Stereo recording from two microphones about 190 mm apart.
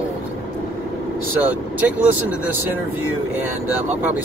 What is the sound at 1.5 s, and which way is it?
Speech, 10° right (ahead or behind).